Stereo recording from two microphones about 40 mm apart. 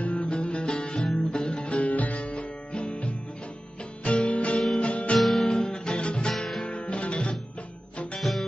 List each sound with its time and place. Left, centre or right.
0.0 s music: left
1.6 s music: left
2.3 s music: left
5.2 s music: centre
5.5 s music: centre
8.2 s music: centre